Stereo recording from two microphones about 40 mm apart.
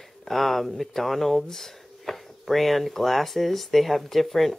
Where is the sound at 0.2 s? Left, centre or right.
Centre.